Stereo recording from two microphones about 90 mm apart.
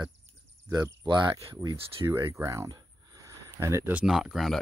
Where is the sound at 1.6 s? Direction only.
35° right (ahead or behind).